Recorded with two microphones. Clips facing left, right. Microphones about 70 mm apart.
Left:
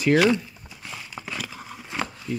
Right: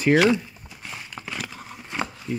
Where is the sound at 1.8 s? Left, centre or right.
Centre.